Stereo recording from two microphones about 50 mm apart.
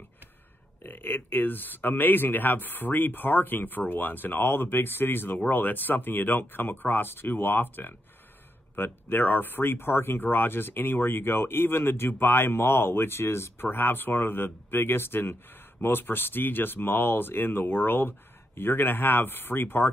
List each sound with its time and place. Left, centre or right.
0.8 s speech: left